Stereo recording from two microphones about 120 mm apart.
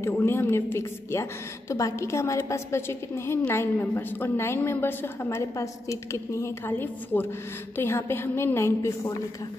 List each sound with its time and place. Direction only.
0.0 s a woman's voice: 20° left (ahead or behind)